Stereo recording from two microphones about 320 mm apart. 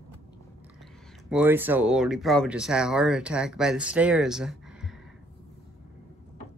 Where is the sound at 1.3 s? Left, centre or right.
Centre.